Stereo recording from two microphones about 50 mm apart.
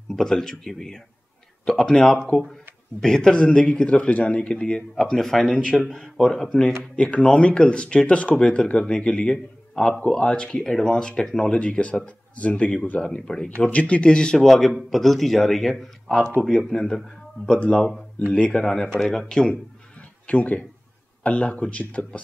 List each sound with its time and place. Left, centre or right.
0.1 s a man's voice: centre
6.8 s a man's voice: left; by 11.5 s centre
11.5 s speech: left
13.0 s a man's voice: centre
18.6 s a man's voice: centre
20.2 s speech: left